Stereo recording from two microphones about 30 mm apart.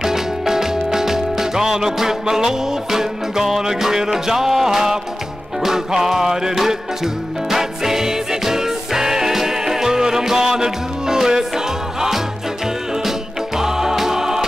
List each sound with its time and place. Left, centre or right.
0.0 s music: centre
13.6 s music: centre